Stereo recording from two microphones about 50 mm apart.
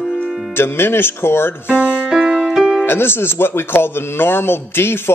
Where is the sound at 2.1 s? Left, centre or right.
Centre.